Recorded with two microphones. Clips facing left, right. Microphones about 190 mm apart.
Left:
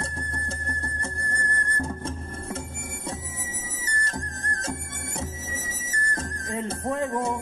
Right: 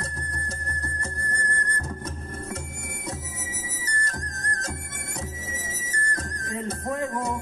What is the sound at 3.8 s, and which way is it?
Music, 25° left (ahead or behind).